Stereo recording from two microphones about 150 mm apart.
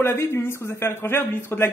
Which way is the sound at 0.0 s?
15° left (ahead or behind).